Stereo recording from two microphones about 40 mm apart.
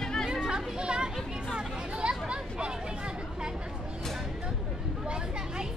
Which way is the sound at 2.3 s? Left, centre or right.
Right.